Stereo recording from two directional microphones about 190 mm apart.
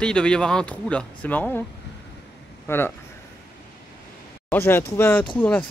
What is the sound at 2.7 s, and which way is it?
Speech, 10° left (ahead or behind).